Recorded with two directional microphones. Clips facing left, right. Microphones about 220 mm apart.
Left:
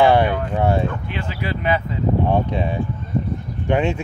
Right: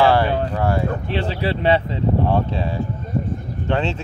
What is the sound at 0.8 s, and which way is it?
Speech, 35° right (ahead or behind).